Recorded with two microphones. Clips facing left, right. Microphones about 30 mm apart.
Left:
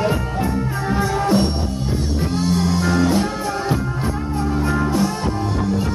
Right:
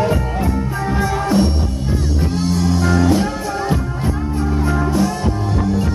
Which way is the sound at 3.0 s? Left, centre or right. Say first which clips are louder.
Right 2 dB; centre.